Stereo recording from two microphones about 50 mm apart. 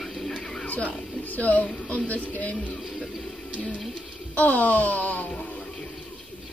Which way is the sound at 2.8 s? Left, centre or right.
Centre.